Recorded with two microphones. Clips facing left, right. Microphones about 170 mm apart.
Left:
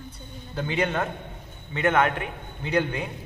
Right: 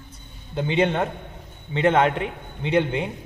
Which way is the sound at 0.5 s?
25° right (ahead or behind).